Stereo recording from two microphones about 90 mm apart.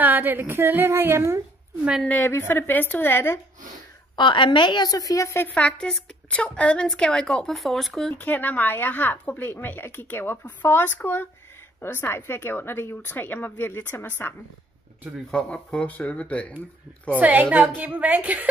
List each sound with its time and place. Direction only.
0.0 s a woman's voice: 20° right (ahead or behind)
2.0 s a woman's voice: 20° left (ahead or behind)
4.2 s a woman's voice: 65° left (ahead or behind); by 5.4 s 35° left (ahead or behind)
5.4 s a woman's voice: 15° left (ahead or behind)
8.2 s a woman's voice: 20° left (ahead or behind)
15.3 s a woman's voice: 10° left (ahead or behind)
17.2 s a woman's voice: 20° right (ahead or behind)